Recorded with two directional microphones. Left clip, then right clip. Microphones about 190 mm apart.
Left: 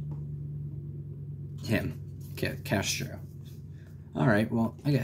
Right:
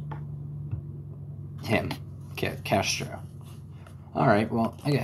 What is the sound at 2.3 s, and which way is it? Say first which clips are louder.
Speech: right 5 dB; 50° left (ahead or behind).